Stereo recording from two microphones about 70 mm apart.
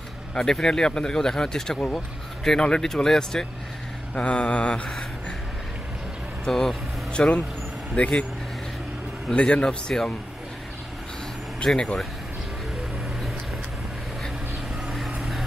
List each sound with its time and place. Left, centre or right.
0.3 s speech: centre
6.4 s speech: centre
9.3 s speech: centre
11.6 s speech: centre
14.9 s vehicle: centre